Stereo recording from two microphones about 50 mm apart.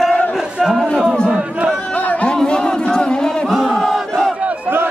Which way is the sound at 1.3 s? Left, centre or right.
Centre.